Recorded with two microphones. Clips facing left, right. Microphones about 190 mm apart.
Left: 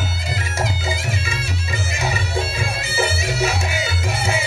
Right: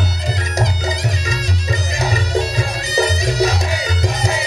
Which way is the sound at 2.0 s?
35° right (ahead or behind).